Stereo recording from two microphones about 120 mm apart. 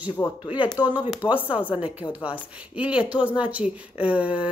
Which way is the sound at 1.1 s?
15° right (ahead or behind).